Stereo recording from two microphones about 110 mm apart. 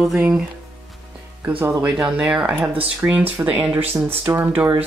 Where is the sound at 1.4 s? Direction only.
15° right (ahead or behind).